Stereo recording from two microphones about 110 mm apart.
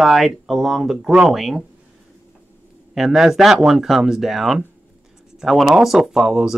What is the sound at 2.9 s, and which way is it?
Speech, 5° right (ahead or behind).